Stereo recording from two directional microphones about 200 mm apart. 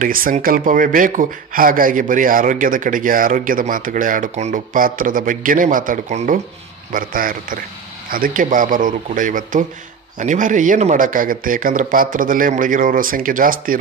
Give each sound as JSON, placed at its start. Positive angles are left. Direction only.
{"t": 0.0, "sound": "speech", "side_deg": -40}